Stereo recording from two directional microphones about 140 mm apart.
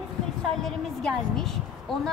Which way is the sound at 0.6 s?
Centre (ahead or behind).